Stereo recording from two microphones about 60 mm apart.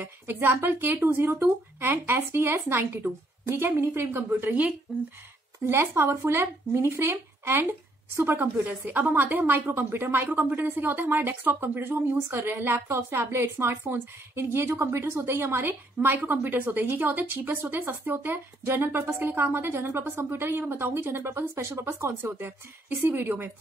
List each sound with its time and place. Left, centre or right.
0.0 s a woman's voice: right
4.5 s speech: right
5.7 s a woman's voice: right
23.0 s a woman's voice: right